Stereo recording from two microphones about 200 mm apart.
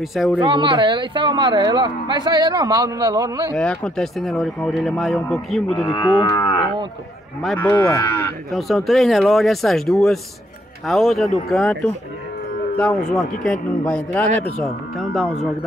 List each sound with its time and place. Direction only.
0.1 s speech: centre (ahead or behind)
0.4 s speech: 25° right (ahead or behind)
3.5 s speech: 5° left (ahead or behind)
5.8 s livestock: 15° left (ahead or behind)
7.4 s speech: 5° left (ahead or behind)
8.5 s speech: centre (ahead or behind)